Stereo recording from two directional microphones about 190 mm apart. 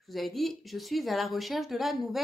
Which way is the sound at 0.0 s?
Centre (ahead or behind).